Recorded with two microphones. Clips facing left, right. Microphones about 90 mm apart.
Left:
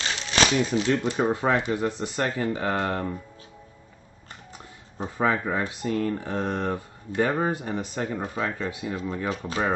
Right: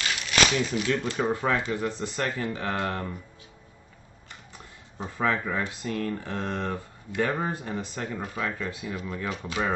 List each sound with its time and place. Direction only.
0.0 s a sound: 30° left (ahead or behind)
1.2 s speech: 20° left (ahead or behind)
4.9 s speech: 20° left (ahead or behind)
8.2 s speech: 30° left (ahead or behind)